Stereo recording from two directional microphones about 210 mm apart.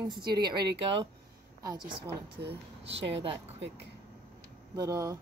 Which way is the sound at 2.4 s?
55° right (ahead or behind).